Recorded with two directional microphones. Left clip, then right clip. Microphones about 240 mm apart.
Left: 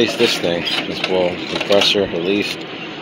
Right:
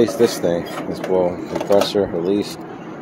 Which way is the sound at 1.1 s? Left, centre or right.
Centre.